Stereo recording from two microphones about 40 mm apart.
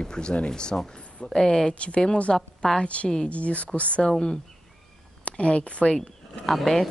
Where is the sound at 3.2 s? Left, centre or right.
Left.